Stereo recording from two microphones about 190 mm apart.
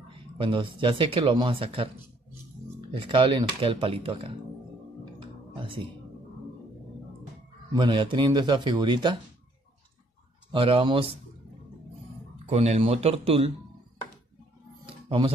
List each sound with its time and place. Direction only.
0.4 s speech: 25° right (ahead or behind)
2.9 s speech: 30° right (ahead or behind)
7.7 s speech: 25° right (ahead or behind)
10.5 s speech: 25° right (ahead or behind)
12.4 s speech: 35° right (ahead or behind)
14.9 s music: 30° right (ahead or behind)